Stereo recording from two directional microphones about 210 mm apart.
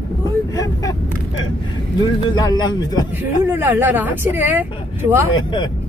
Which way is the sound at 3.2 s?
10° right (ahead or behind).